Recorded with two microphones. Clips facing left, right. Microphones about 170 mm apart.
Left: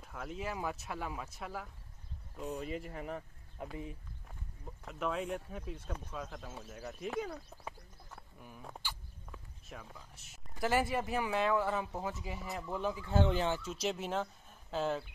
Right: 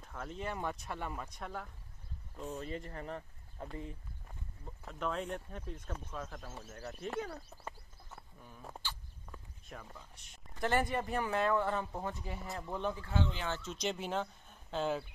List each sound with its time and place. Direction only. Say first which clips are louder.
0.0 s speech: left 1 dB; 5° left (ahead or behind)
4.8 s speech: left 1 dB; 5° left (ahead or behind)
7.2 s a sound: left 1 dB; centre (ahead or behind)
8.4 s speech: left 1 dB; 10° left (ahead or behind)
13.1 s speech: left 8 dB; 50° left (ahead or behind)
13.5 s speech: left 2 dB; 10° left (ahead or behind)